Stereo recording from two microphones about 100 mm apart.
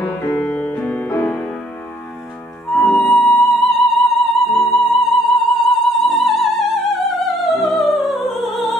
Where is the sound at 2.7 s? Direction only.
Centre (ahead or behind).